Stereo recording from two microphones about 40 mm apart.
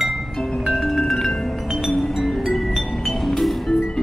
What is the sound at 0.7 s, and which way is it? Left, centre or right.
Music, centre.